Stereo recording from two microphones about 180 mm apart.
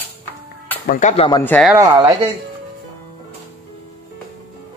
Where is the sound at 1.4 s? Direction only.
10° left (ahead or behind).